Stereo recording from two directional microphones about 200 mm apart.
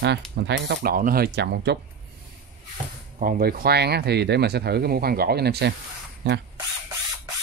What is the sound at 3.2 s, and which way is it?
Speech, 45° right (ahead or behind).